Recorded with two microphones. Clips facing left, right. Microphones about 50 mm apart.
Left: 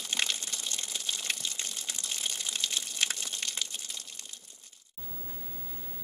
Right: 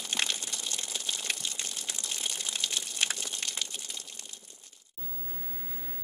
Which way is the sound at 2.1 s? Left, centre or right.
Centre.